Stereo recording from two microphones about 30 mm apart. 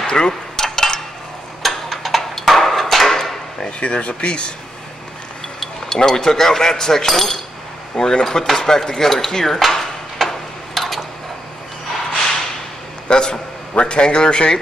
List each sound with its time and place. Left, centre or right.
0.0 s speech: left
0.3 s cutlery: centre
1.6 s a sound: centre
3.8 s speech: left
5.9 s speech: centre
7.9 s speech: left
9.6 s dishes: centre
13.1 s a sound: left